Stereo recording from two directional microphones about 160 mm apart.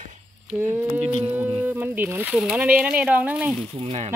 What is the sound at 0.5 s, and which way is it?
Speech, 15° right (ahead or behind).